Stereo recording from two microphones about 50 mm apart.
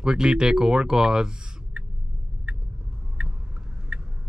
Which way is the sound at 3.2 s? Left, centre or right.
Centre.